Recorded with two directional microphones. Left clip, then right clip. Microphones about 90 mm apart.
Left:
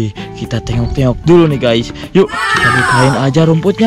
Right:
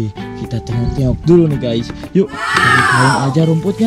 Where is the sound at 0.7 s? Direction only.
25° left (ahead or behind).